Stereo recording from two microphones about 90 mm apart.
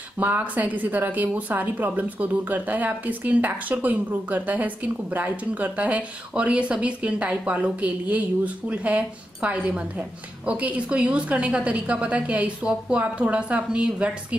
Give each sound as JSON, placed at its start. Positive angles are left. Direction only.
{"t": 0.2, "sound": "speech", "side_deg": -20}